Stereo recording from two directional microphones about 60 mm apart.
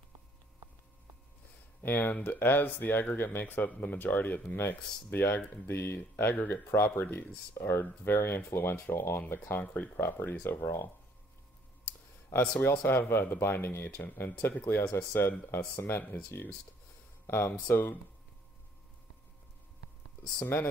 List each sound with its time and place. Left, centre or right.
1.8 s speech: left
6.5 s speech: left
12.3 s speech: left
15.5 s speech: left
17.3 s speech: left
20.3 s speech: left